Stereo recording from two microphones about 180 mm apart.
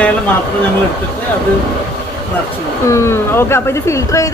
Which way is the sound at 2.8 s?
15° left (ahead or behind).